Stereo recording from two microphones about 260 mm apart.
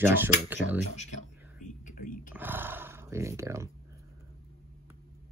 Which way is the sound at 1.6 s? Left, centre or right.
Left.